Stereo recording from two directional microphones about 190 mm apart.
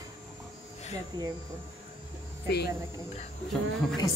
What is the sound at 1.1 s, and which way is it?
Speech, 20° right (ahead or behind).